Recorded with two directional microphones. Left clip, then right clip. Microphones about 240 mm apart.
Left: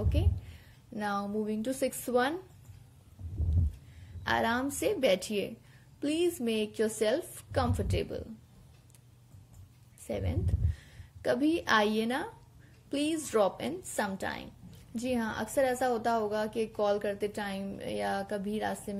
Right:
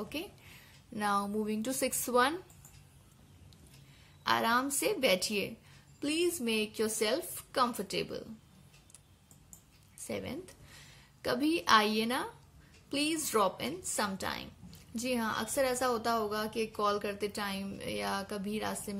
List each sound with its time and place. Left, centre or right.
0.1 s a woman's voice: right
4.2 s a woman's voice: right
10.0 s a woman's voice: right